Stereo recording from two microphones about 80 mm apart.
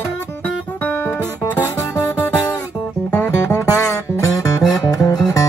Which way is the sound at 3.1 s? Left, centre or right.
Left.